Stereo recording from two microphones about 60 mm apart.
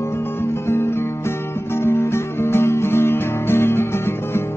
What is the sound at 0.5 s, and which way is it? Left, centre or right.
Music, left.